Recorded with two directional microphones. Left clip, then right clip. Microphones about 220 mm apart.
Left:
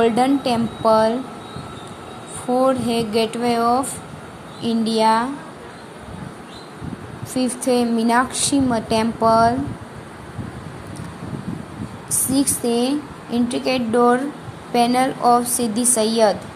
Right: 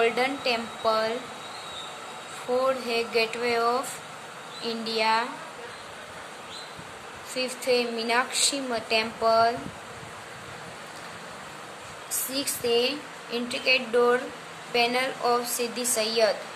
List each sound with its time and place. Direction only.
0.0 s a woman's voice: 15° left (ahead or behind)
2.6 s a woman's voice: 15° left (ahead or behind)
7.3 s a woman's voice: 20° left (ahead or behind)
12.3 s a woman's voice: 15° left (ahead or behind)